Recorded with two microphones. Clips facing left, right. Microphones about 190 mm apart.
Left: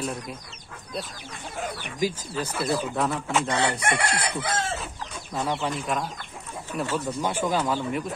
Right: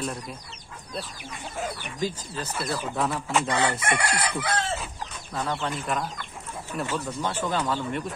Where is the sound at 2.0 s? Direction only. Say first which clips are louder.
Left 4 dB; 10° left (ahead or behind).